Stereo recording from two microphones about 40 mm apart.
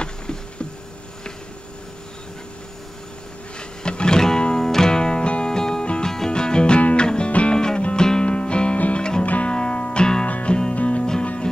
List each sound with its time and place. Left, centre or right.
0.0 s insect: left
3.5 s music: left
6.8 s music: left
7.5 s music: centre
8.7 s music: left
9.5 s music: left
10.2 s music: left
10.5 s music: left